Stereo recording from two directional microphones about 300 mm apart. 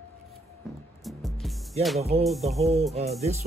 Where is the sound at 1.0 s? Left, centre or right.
Centre.